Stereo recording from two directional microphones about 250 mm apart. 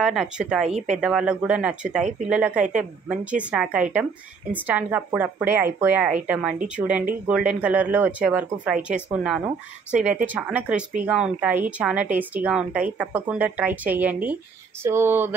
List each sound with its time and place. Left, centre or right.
0.0 s speech: centre
0.7 s speech: right
1.0 s a woman's voice: centre